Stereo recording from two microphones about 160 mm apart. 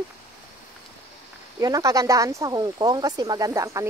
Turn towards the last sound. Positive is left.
turn(degrees=-20)  # may be behind; listen again after turning